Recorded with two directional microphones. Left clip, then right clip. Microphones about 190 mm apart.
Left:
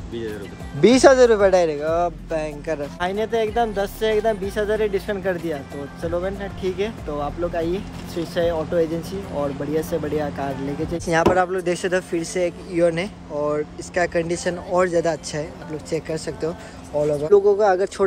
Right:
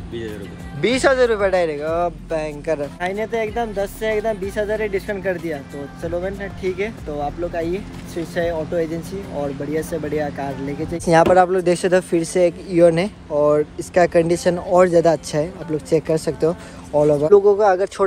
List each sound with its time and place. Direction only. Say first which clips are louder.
0.7 s speech: left 3 dB; 25° left (ahead or behind)
1.8 s speech: even; centre (ahead or behind)